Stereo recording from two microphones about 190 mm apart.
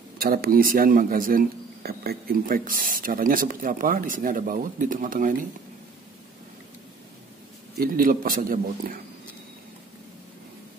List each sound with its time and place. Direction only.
0.2 s speech: 55° right (ahead or behind)
7.8 s speech: 50° right (ahead or behind)